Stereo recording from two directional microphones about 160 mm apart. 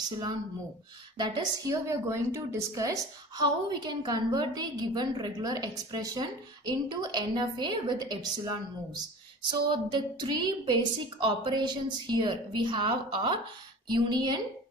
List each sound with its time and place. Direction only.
1.1 s a woman's voice: 25° right (ahead or behind)